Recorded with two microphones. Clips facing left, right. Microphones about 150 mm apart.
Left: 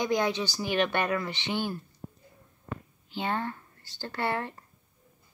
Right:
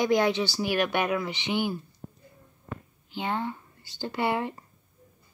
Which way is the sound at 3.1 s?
15° right (ahead or behind).